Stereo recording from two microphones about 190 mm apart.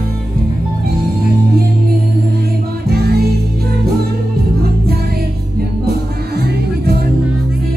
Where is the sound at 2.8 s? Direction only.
55° right (ahead or behind).